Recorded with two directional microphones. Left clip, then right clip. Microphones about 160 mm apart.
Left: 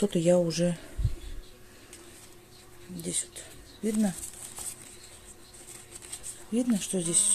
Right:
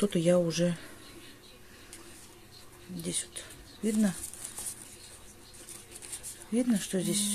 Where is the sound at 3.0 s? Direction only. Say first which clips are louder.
Left 1 dB; 10° left (ahead or behind).